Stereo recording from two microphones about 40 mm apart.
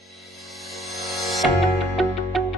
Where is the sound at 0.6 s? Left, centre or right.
Centre.